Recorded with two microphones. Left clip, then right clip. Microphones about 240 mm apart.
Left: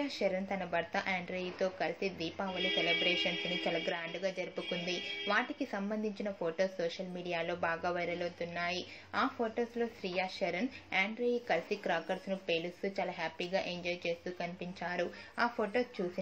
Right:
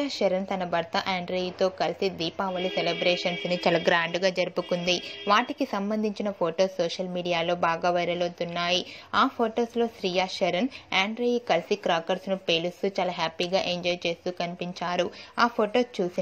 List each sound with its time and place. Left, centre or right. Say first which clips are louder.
0.0 s a woman's voice: right 9 dB; right